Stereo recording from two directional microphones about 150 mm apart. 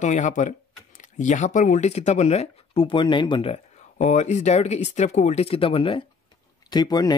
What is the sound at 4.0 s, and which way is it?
Speech, 50° left (ahead or behind).